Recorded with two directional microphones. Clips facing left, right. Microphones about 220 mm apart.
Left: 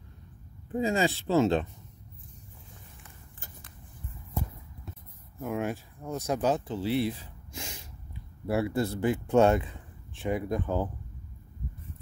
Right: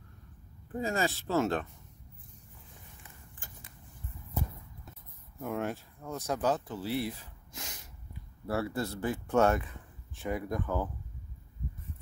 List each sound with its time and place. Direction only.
0.7 s a man's voice: 20° left (ahead or behind)
5.4 s speech: 10° left (ahead or behind)
6.2 s a man's voice: 20° left (ahead or behind)